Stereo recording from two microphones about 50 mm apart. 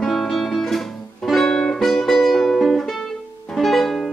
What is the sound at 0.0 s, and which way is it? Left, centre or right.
Music, centre.